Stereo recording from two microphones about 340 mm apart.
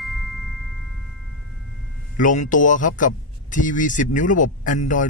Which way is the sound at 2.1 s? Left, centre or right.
Left.